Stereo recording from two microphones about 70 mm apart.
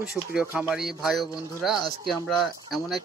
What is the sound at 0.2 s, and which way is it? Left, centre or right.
A man's voice, centre.